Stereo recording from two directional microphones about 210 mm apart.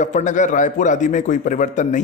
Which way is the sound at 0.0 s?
35° left (ahead or behind).